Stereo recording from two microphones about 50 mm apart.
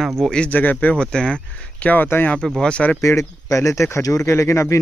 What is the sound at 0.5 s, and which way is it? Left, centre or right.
Speech, left.